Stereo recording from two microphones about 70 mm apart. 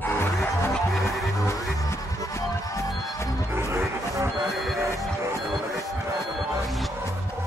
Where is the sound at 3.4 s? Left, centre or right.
Right.